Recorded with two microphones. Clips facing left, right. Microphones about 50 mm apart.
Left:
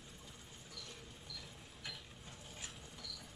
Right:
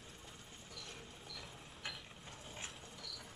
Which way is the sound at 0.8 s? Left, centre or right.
Right.